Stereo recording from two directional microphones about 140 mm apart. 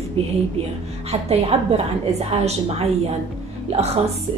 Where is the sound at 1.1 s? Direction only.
45° right (ahead or behind).